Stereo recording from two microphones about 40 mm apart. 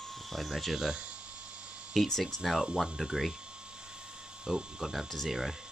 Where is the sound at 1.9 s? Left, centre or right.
Centre.